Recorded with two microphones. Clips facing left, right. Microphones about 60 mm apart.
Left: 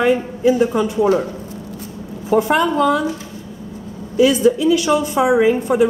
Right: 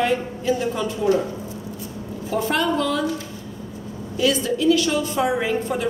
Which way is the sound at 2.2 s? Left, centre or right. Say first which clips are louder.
Left 6 dB; left.